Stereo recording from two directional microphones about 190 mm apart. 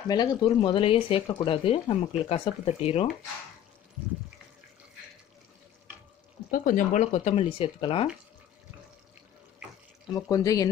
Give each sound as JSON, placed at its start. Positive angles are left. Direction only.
{"t": 0.1, "sound": "speech", "side_deg": 20}
{"t": 6.5, "sound": "speech", "side_deg": 45}
{"t": 10.1, "sound": "speech", "side_deg": 20}